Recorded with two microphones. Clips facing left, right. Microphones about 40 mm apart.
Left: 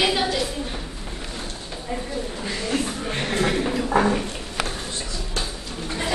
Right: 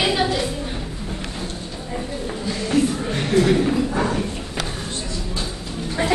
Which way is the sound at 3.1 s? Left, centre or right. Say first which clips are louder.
Right 2 dB; left.